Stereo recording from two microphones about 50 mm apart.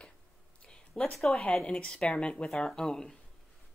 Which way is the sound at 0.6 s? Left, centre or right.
Centre.